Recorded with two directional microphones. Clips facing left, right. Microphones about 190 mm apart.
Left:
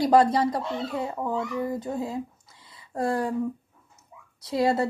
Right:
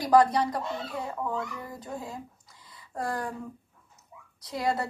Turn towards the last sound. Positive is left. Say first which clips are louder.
# left 6 dB
turn(degrees=25)  # may be behind; listen again after turning